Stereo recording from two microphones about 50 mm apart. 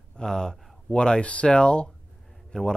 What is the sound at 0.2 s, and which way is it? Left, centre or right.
Speech, centre.